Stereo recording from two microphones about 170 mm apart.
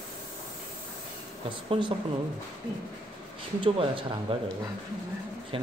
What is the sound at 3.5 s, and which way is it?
Speech, 30° right (ahead or behind).